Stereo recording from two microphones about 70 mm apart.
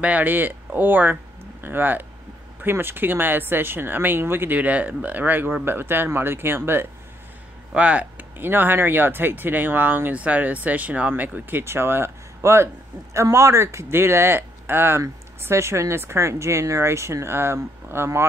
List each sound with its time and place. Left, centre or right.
0.0 s speech: right
4.6 s speech: right
7.7 s speech: centre
11.6 s speech: right